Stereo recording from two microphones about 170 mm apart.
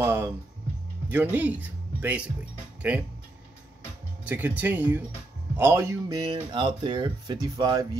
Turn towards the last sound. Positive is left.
turn(degrees=-25)  # may be behind; listen again after turning